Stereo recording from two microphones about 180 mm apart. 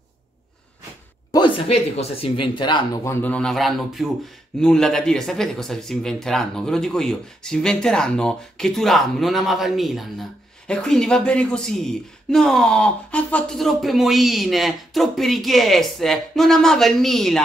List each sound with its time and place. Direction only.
1.3 s speech: 30° left (ahead or behind); by 17.4 s centre (ahead or behind)